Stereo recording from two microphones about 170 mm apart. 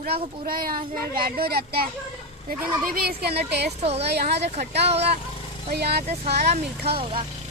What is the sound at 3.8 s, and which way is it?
Speech, 35° right (ahead or behind).